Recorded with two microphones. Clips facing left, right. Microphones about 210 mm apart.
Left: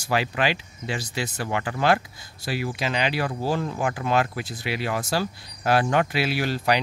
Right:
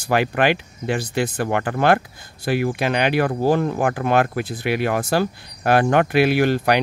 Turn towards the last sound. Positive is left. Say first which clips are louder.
# right 6 dB
turn(degrees=-55)  # may be behind; listen again after turning